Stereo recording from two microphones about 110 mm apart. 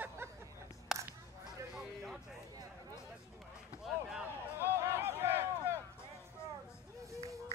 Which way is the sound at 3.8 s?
5° right (ahead or behind).